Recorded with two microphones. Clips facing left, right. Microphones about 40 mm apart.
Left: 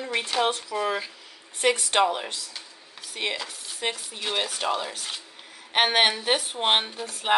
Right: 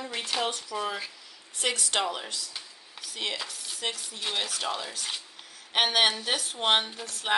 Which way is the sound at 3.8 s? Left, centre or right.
Left.